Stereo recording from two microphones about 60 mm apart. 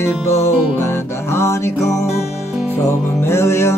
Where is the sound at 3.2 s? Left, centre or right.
Left.